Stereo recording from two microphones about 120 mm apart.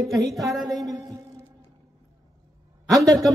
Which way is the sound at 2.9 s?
30° right (ahead or behind).